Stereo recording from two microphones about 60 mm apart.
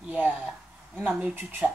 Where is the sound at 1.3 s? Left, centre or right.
Right.